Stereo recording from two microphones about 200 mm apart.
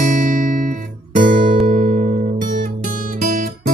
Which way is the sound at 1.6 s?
35° right (ahead or behind).